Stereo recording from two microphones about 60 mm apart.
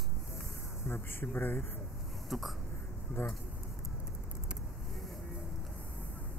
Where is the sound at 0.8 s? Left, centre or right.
Left.